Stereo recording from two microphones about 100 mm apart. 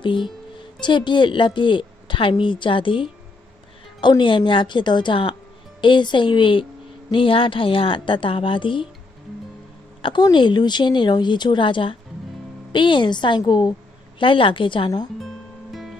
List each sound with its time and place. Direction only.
0.0 s a woman's voice: 55° left (ahead or behind)
4.2 s a woman's voice: 55° left (ahead or behind)
10.3 s a woman's voice: 50° left (ahead or behind)
14.2 s a woman's voice: 60° left (ahead or behind)
15.1 s music: centre (ahead or behind)